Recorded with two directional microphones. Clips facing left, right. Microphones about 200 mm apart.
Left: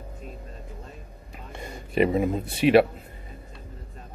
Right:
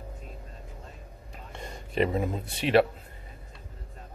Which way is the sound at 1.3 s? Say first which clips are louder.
Left 3 dB; 5° left (ahead or behind).